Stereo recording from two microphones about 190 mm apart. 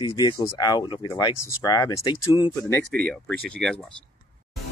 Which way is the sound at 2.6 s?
10° left (ahead or behind).